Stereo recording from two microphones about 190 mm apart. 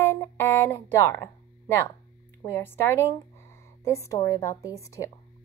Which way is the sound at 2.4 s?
10° left (ahead or behind).